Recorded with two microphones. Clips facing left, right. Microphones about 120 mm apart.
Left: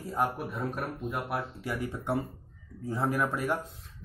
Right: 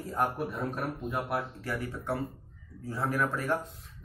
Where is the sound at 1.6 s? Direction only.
15° left (ahead or behind).